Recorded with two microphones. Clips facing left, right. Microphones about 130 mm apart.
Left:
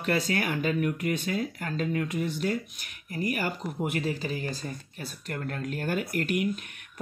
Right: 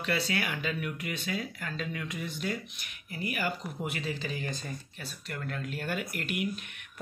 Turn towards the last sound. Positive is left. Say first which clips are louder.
# left 6 dB
turn(degrees=45)  # may be behind; listen again after turning